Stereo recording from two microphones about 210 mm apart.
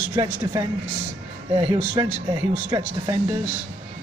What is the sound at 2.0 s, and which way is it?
Speech, 15° right (ahead or behind).